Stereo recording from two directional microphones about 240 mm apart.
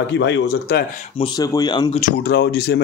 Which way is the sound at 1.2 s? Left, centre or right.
Centre.